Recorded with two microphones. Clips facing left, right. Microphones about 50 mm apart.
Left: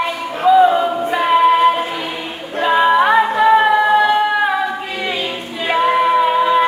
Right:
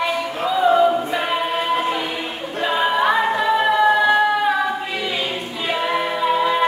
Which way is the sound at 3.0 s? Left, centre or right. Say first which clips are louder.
Left 5 dB; left.